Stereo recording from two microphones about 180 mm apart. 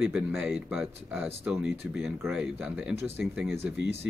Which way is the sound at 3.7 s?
70° left (ahead or behind).